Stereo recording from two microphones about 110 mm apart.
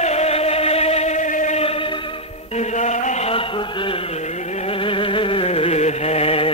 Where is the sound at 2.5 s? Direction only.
85° left.